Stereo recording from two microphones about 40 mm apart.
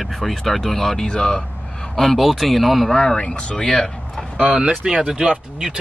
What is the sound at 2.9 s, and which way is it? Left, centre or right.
Speech, centre.